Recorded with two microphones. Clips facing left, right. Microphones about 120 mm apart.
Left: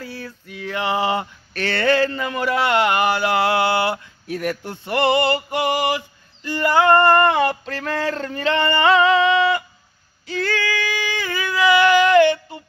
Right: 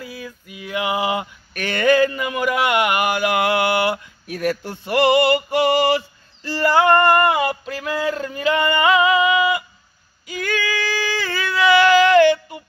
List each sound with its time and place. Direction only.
0.0 s a sound: 15° right (ahead or behind)
0.7 s male singing: 35° left (ahead or behind)
1.5 s speech: 15° right (ahead or behind)
3.1 s speech: 25° left (ahead or behind)
5.2 s a sound: 25° left (ahead or behind)
7.1 s speech: 10° right (ahead or behind)
8.9 s music: 10° right (ahead or behind)
10.2 s female singing: 10° right (ahead or behind)
10.7 s singing: 30° right (ahead or behind)
11.1 s a sound: 20° left (ahead or behind)